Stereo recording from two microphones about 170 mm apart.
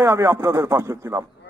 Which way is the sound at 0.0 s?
15° right (ahead or behind).